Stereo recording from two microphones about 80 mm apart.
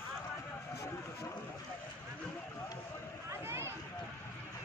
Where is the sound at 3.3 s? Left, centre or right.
Right.